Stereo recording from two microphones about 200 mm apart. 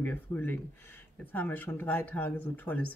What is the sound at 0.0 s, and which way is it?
Speech, 10° left (ahead or behind).